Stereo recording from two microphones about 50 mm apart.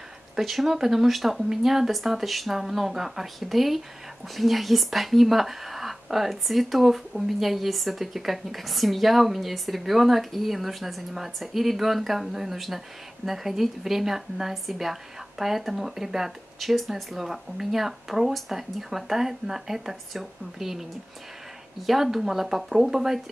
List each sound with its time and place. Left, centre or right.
0.4 s a woman's voice: centre
21.8 s a woman's voice: centre